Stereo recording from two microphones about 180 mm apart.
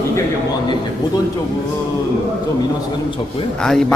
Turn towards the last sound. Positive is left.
turn(degrees=5)  # may be behind; listen again after turning